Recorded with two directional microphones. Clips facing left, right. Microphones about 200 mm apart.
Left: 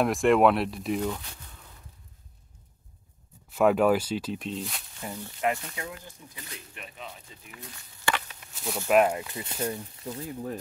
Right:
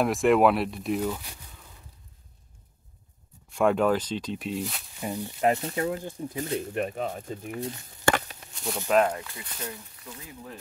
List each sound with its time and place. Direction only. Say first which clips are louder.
0.0 s speech: even; centre (ahead or behind)
3.4 s speech: left 1 dB; 5° left (ahead or behind)
5.0 s speech: right 6 dB; 15° right (ahead or behind)
5.4 s speech: right 5 dB; 35° right (ahead or behind)
6.2 s speech: right 16 dB; 50° right (ahead or behind)
8.0 s walk: right 6 dB; 40° right (ahead or behind)
8.5 s speech: left 1 dB; centre (ahead or behind); by 9.6 s 20° left (ahead or behind)
9.7 s speech: left 7 dB; 30° left (ahead or behind)